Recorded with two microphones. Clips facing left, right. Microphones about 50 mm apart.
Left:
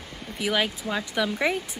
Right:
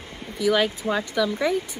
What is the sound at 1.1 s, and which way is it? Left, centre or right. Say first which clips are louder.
Speech: even; left.